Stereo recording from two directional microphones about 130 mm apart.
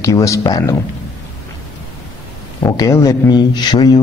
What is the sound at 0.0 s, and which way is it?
Speech, 25° left (ahead or behind).